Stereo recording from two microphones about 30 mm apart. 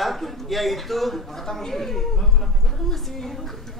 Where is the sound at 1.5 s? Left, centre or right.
Centre.